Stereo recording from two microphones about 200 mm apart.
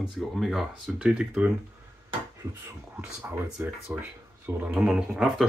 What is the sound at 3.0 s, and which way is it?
Speech, 10° right (ahead or behind).